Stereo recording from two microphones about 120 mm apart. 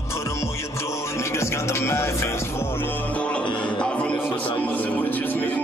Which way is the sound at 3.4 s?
45° left (ahead or behind).